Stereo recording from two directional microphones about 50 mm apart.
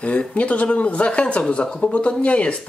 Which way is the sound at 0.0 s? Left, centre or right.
Left.